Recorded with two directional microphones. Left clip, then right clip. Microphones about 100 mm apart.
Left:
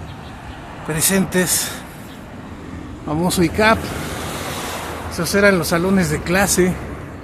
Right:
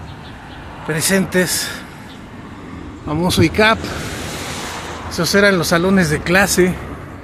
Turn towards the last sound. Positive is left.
turn(degrees=-15)  # may be behind; listen again after turning